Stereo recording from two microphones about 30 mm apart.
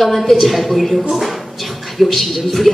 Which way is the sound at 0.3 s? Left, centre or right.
Centre.